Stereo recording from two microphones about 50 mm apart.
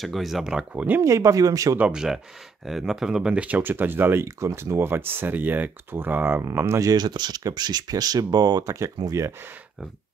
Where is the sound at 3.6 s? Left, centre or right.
Right.